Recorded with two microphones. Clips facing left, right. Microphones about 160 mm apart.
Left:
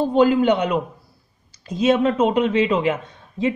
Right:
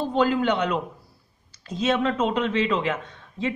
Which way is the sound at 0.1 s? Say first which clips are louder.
Left 5 dB; 15° left (ahead or behind).